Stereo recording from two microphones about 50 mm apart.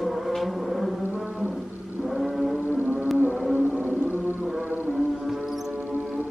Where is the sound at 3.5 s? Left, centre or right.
Right.